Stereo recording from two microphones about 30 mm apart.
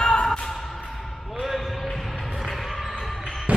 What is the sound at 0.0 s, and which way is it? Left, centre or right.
Music, centre.